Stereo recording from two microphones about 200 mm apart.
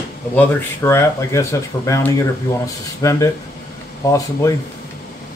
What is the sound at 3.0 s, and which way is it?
Speech, 15° left (ahead or behind).